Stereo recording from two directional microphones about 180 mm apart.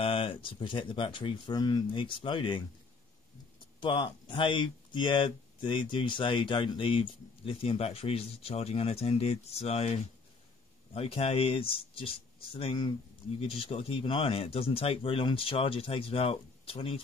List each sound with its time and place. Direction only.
0.0 s speech: 30° left (ahead or behind)
3.8 s speech: 30° left (ahead or behind)